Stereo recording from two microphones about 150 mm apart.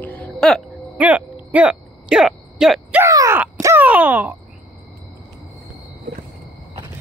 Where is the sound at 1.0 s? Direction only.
10° right (ahead or behind).